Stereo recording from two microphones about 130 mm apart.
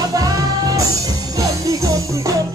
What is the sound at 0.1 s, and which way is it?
Music, 25° right (ahead or behind).